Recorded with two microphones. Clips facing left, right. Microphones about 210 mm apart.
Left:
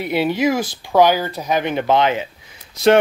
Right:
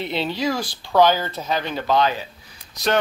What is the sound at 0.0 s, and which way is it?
Speech, 10° left (ahead or behind).